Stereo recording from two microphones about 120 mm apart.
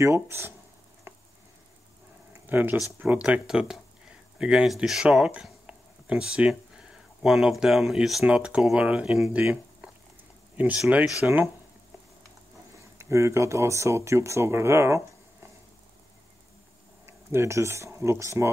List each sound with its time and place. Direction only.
0.0 s speech: 25° right (ahead or behind)
2.4 s speech: 15° right (ahead or behind)
12.7 s speech: 25° right (ahead or behind)
17.0 s speech: 20° right (ahead or behind)